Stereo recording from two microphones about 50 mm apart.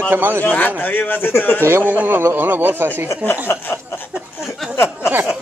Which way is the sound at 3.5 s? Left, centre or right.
Left.